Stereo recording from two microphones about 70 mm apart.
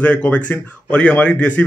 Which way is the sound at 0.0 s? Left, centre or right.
Centre.